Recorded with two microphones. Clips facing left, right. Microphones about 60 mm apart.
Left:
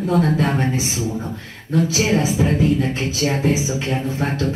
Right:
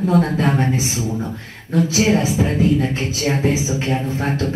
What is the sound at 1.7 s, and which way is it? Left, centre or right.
Music, right.